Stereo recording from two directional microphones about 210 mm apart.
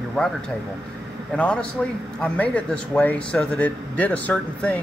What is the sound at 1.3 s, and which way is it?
A man's voice, 5° left (ahead or behind).